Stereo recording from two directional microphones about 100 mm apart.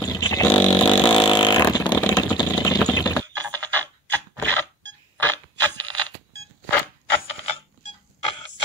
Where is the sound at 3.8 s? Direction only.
15° left (ahead or behind).